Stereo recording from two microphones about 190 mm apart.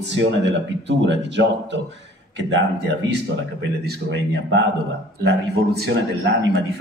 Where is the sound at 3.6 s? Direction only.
65° right (ahead or behind).